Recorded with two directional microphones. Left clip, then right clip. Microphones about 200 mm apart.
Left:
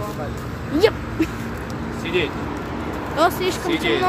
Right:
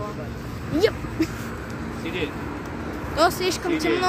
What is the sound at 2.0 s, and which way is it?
Vehicle, 20° left (ahead or behind).